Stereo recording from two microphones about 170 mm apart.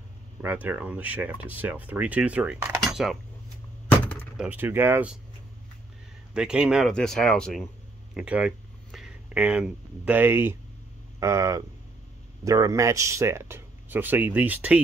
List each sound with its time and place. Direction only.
0.4 s speech: 10° right (ahead or behind)
4.4 s speech: 10° right (ahead or behind)
6.3 s speech: 5° right (ahead or behind)